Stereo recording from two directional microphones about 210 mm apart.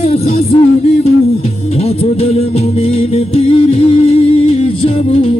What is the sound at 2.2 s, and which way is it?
Music, 30° left (ahead or behind).